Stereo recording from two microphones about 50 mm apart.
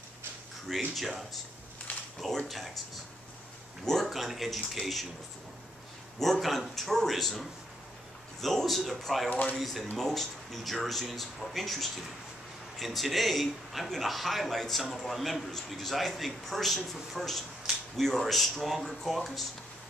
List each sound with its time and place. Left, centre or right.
0.7 s a man's voice: centre
1.9 s a sound: left
2.2 s a man's voice: centre
3.8 s a man's voice: centre
6.1 s a man's voice: centre
9.3 s speech: left
9.6 s a man's voice: centre